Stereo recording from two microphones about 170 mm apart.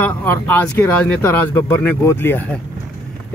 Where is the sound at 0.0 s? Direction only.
10° left (ahead or behind).